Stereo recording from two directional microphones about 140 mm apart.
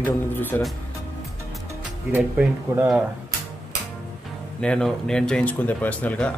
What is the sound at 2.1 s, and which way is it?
Speech, 15° right (ahead or behind).